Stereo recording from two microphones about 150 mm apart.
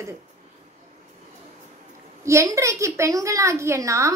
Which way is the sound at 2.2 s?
20° right (ahead or behind).